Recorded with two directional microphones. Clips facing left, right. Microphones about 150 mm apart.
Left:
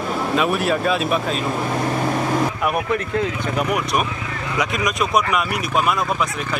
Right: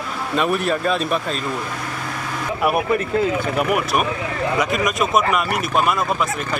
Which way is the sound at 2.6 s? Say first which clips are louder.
Right 2 dB; 5° right (ahead or behind).